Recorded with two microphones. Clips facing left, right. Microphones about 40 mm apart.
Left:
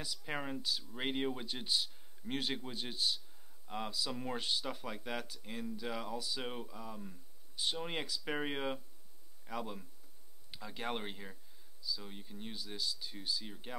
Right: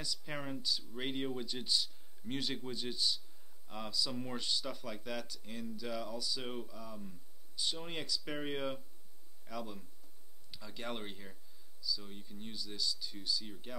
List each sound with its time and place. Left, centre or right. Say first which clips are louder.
0.0 s speech: left 1 dB; left